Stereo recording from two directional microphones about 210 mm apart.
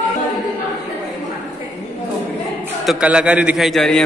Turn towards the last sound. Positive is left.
turn(degrees=0)  # may be behind; listen again after turning